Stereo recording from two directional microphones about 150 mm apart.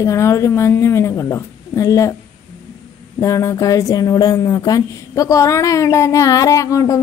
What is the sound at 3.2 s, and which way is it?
Speech, 20° left (ahead or behind).